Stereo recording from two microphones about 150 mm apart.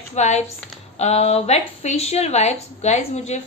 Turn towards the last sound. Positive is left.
turn(degrees=50)  # may be behind; listen again after turning